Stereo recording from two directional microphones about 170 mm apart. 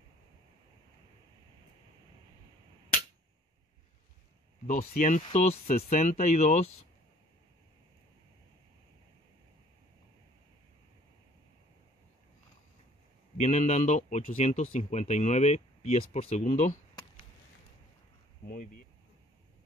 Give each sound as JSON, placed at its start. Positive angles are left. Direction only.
{"t": 4.6, "sound": "speech", "side_deg": 45}
{"t": 13.4, "sound": "speech", "side_deg": 40}
{"t": 18.4, "sound": "speech", "side_deg": 60}